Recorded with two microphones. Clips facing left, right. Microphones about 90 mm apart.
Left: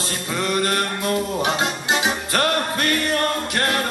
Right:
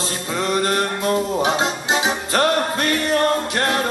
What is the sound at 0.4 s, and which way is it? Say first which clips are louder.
Music: right 2 dB; 20° right (ahead or behind).